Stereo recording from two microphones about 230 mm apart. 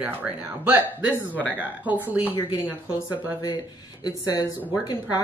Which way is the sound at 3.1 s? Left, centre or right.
Centre.